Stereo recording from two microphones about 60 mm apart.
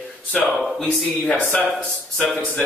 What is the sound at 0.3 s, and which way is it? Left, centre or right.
Speech, centre.